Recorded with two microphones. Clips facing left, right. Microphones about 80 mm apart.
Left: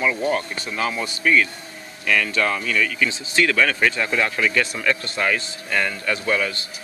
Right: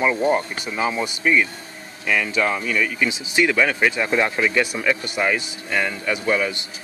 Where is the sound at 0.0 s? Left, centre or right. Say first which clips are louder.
Right 3 dB; right.